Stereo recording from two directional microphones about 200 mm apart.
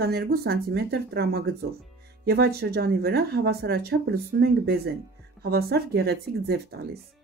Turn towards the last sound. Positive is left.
turn(degrees=-55)  # may be behind; listen again after turning